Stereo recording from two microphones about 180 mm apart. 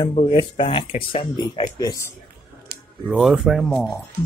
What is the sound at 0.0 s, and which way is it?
Speech, 30° left (ahead or behind).